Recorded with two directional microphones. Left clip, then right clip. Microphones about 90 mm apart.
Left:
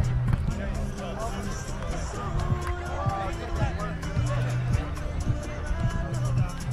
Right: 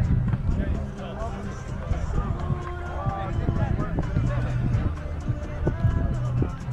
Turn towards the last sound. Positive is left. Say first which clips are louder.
# even
turn(degrees=5)  # may be behind; listen again after turning